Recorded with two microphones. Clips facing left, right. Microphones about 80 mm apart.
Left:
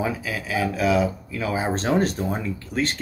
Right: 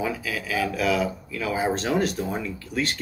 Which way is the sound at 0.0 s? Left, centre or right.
Left.